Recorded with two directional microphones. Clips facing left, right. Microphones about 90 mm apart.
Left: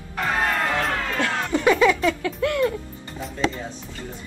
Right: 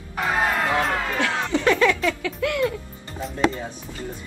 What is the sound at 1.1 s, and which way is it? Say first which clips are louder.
Music: even; 15° right (ahead or behind).